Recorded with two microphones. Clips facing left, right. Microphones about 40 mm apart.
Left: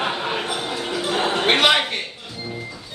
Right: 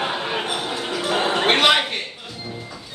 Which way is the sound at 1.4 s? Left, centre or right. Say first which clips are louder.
Even; centre.